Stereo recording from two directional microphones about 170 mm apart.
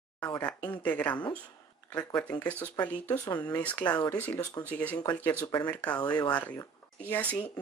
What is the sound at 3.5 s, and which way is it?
Speech, 10° left (ahead or behind).